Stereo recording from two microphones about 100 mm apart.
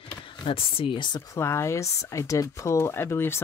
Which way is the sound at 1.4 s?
25° left (ahead or behind).